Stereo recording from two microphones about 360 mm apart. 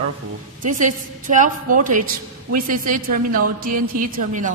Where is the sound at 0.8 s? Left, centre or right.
Right.